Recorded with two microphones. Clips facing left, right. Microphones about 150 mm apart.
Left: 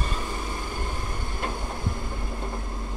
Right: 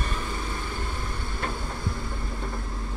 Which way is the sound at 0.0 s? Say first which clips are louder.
Even; 10° left (ahead or behind).